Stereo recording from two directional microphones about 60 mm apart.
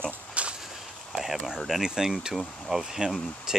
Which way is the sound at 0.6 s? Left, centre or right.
Centre.